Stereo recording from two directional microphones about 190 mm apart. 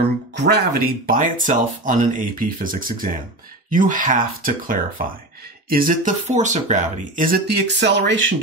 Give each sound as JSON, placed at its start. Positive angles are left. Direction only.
{"t": 0.4, "sound": "speech", "side_deg": -55}